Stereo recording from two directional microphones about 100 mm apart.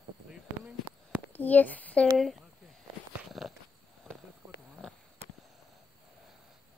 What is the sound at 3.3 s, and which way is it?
Dog, centre (ahead or behind).